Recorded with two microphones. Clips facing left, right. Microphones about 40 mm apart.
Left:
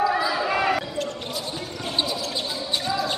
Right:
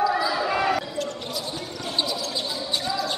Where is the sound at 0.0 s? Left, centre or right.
Left.